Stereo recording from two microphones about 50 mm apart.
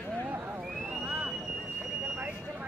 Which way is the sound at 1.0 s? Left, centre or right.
Right.